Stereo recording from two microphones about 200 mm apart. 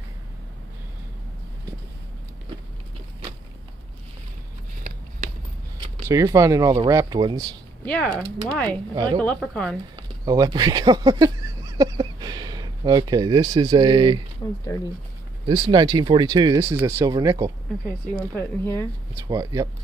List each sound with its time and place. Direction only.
6.0 s speech: 15° right (ahead or behind)
7.8 s speech: 5° left (ahead or behind)
8.6 s speech: 25° right (ahead or behind)
9.4 s speech: 5° left (ahead or behind)
9.9 s speech: 20° right (ahead or behind)
15.4 s speech: 20° right (ahead or behind)
18.3 s speech: 15° left (ahead or behind)
19.2 s speech: 15° right (ahead or behind)